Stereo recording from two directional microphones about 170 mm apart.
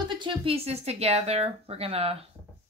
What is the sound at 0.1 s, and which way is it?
A woman's voice, 30° right (ahead or behind).